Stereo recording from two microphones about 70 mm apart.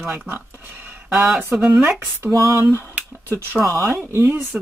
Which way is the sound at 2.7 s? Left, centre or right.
Right.